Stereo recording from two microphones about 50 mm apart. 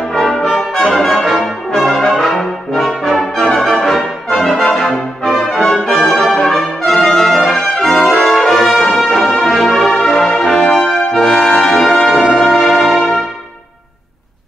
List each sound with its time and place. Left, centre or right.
0.1 s brass instrument: centre
11.2 s brass instrument: centre
11.9 s brass instrument: centre